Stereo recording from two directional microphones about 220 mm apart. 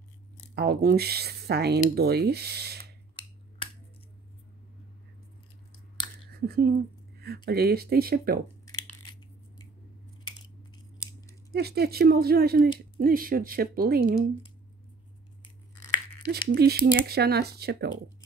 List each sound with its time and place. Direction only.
0.6 s speech: 45° right (ahead or behind)
6.4 s speech: 45° right (ahead or behind)
11.0 s scissors: 15° left (ahead or behind)
11.5 s speech: 45° right (ahead or behind)
16.3 s speech: 45° right (ahead or behind)